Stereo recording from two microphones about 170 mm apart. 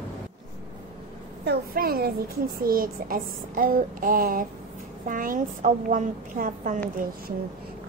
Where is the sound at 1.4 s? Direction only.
60° right (ahead or behind).